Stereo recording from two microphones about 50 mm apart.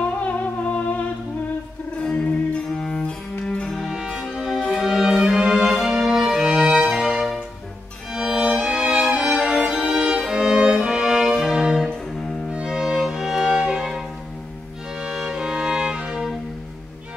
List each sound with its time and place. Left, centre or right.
0.2 s music: left
2.5 s music: centre
3.8 s music: centre
8.1 s violin: centre
9.1 s music: centre
11.9 s cello: centre
12.6 s music: centre
15.0 s music: centre